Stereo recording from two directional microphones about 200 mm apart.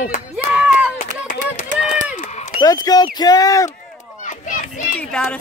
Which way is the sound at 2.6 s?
20° left (ahead or behind).